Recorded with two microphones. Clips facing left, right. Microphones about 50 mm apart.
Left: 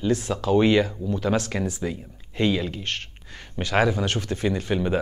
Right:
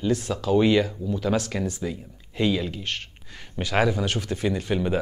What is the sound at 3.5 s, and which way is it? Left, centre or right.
Speech, centre.